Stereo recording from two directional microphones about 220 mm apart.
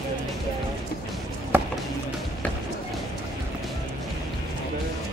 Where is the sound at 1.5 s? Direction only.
10° right (ahead or behind).